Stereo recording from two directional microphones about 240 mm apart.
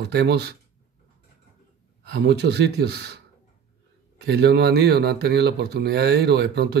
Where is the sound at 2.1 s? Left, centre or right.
Right.